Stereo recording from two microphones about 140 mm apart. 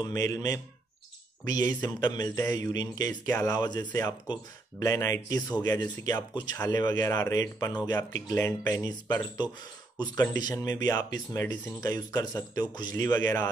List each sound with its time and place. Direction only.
0.0 s speech: 25° left (ahead or behind)
10.4 s speech: 25° left (ahead or behind)